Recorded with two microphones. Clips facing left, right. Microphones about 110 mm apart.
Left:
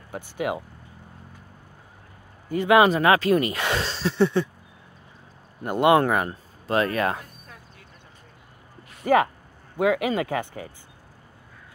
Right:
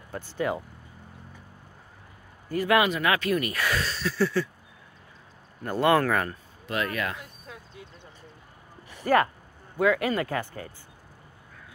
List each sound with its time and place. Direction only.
0.1 s speech: 15° left (ahead or behind)
2.5 s speech: 25° left (ahead or behind)
5.6 s speech: 20° left (ahead or behind)
6.8 s speech: 35° left (ahead or behind)
9.0 s speech: 20° left (ahead or behind)